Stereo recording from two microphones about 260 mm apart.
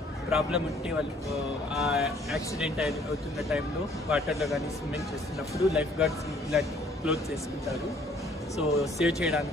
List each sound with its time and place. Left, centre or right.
0.3 s speech: centre
8.5 s speech: centre